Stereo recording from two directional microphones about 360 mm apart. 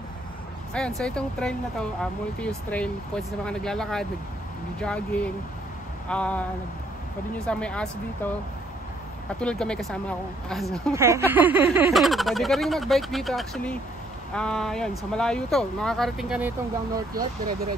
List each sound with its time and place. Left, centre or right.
0.7 s speech: centre
9.4 s speech: centre